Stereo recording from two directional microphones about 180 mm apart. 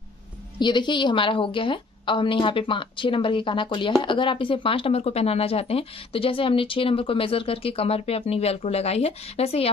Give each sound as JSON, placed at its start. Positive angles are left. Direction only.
{"t": 0.6, "sound": "a woman's voice", "side_deg": 25}